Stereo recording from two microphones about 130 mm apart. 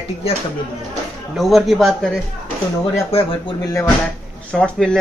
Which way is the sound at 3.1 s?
50° left (ahead or behind).